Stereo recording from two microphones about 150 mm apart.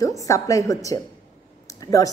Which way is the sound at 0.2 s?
20° left (ahead or behind).